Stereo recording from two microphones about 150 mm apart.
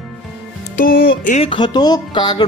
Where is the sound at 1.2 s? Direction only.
50° left (ahead or behind).